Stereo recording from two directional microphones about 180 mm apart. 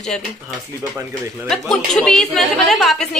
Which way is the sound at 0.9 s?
15° right (ahead or behind).